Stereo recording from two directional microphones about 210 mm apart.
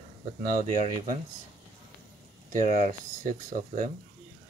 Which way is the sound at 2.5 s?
35° right (ahead or behind).